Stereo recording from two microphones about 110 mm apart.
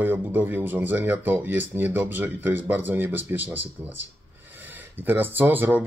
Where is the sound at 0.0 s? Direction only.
15° right (ahead or behind).